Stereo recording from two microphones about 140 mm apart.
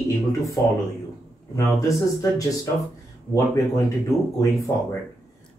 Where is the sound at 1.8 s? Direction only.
25° left (ahead or behind).